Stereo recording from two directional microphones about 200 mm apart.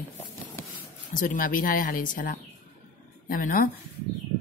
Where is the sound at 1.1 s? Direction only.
45° left (ahead or behind).